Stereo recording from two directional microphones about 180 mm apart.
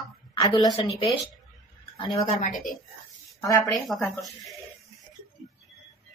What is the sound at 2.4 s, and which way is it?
Speech, 45° left (ahead or behind).